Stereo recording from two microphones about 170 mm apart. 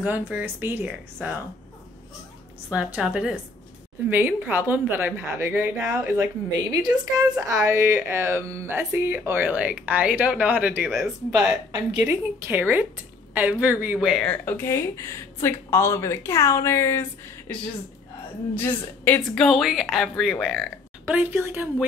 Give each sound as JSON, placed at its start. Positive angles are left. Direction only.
{"t": 0.0, "sound": "speech", "side_deg": -10}
{"t": 2.7, "sound": "speech", "side_deg": -5}
{"t": 6.7, "sound": "a woman's voice", "side_deg": -20}
{"t": 11.3, "sound": "speech", "side_deg": -20}
{"t": 13.9, "sound": "speech", "side_deg": 0}